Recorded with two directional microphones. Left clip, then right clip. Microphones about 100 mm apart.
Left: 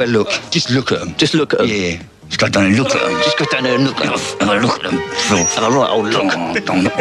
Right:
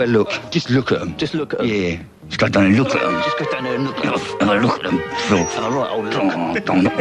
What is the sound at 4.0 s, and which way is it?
Speech, 20° right (ahead or behind).